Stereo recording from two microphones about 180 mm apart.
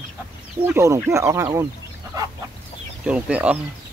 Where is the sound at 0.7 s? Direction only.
15° right (ahead or behind).